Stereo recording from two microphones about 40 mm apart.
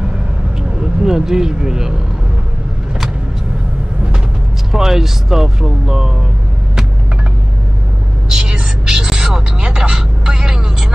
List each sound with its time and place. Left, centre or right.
0.7 s speech: centre
4.7 s speech: centre
8.3 s a sound: right